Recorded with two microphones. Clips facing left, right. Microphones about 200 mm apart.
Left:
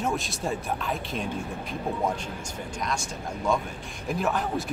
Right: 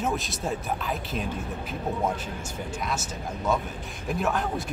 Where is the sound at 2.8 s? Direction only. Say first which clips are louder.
Left 2 dB; 5° right (ahead or behind).